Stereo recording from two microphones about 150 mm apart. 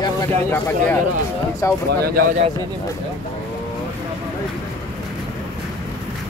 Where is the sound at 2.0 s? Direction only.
80° right.